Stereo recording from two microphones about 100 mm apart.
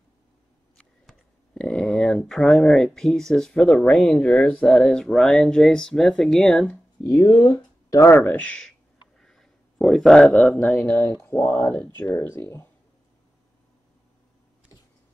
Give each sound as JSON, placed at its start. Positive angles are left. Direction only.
{"t": 0.7, "sound": "speech", "side_deg": 5}
{"t": 7.2, "sound": "speech", "side_deg": 30}